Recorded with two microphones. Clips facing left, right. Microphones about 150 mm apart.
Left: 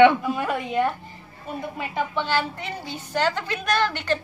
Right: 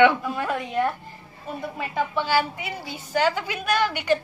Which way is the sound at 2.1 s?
5° right (ahead or behind).